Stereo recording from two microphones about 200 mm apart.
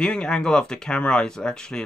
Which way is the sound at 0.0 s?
5° left (ahead or behind).